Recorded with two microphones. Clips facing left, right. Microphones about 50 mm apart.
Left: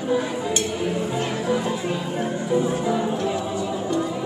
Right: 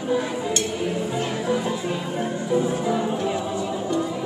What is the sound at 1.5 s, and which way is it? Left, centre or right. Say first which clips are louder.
Music: left 1 dB; centre.